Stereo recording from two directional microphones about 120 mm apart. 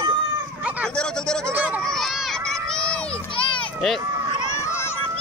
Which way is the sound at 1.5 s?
15° right (ahead or behind).